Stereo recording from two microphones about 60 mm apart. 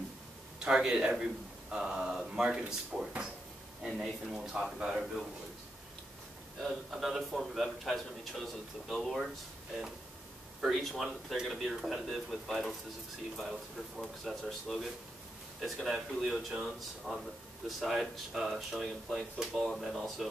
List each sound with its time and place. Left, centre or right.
0.6 s a man's voice: centre
6.6 s a man's voice: centre
10.6 s a man's voice: centre